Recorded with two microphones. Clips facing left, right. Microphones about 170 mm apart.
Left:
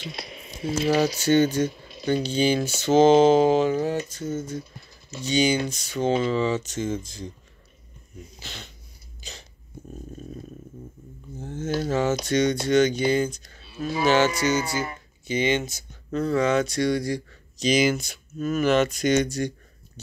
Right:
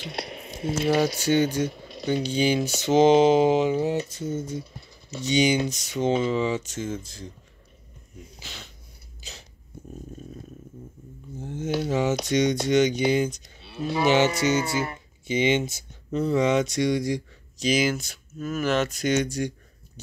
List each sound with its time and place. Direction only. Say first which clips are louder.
0.0 s speech: right 3 dB; 65° right (ahead or behind)
1.2 s speech: left 2 dB; 10° right (ahead or behind)
1.7 s a sound: right 3 dB; 65° right (ahead or behind)
2.2 s speech: right 1 dB; 15° right (ahead or behind)
8.4 s dog: left 2 dB; 5° right (ahead or behind)
9.2 s sneeze: left 2 dB; 5° right (ahead or behind)
11.4 s a sound: even; 15° right (ahead or behind)
11.9 s speech: left 1 dB; 15° right (ahead or behind)
13.6 s cattle: right 1 dB; 65° right (ahead or behind)
14.0 s speech: even; 20° right (ahead or behind)